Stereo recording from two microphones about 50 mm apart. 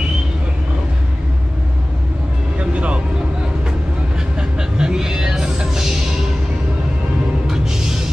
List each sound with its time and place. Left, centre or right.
2.7 s vehicle: right
4.4 s music: centre
7.4 s music: centre